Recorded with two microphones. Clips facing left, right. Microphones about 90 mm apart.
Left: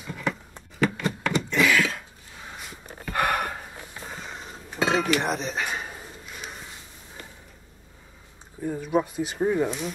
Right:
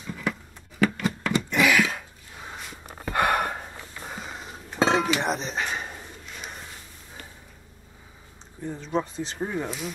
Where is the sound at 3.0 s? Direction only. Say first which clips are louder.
Right 2 dB; 15° right (ahead or behind).